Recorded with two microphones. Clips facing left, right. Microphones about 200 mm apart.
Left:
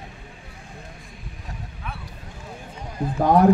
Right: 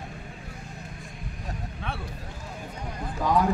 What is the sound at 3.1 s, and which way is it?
Speech, 50° left (ahead or behind).